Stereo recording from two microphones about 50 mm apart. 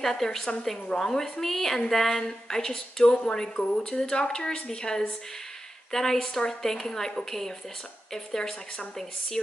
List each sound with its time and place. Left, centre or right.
0.0 s a woman's voice: centre